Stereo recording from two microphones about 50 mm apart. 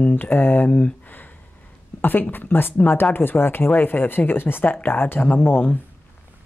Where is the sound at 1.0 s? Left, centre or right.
Left.